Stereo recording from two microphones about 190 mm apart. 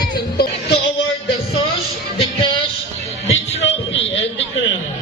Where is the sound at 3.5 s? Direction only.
75° left (ahead or behind).